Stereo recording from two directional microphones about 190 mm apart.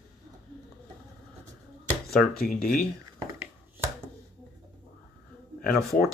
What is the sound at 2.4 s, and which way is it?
Speech, 50° left (ahead or behind).